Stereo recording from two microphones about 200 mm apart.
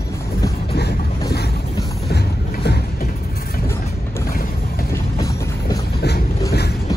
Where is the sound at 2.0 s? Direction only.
55° left (ahead or behind).